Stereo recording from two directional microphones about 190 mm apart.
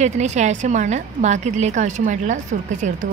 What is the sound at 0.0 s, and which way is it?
A woman's voice, 35° right (ahead or behind).